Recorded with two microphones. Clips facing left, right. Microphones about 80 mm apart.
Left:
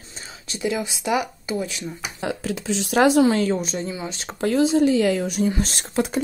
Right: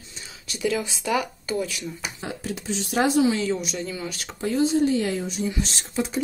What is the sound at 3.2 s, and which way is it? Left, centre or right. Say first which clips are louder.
Speech: left 4 dB; left.